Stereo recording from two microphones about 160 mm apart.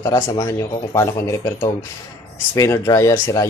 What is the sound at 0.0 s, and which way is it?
Speech, 20° left (ahead or behind).